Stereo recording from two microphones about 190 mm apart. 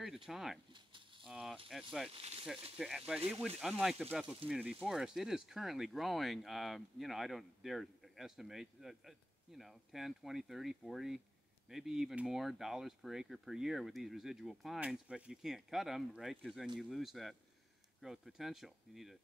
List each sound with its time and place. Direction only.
0.0 s speech: centre (ahead or behind)
0.7 s a sound: 25° right (ahead or behind)
1.2 s speech: centre (ahead or behind)
2.1 s speech: 30° right (ahead or behind)
2.8 s speech: centre (ahead or behind)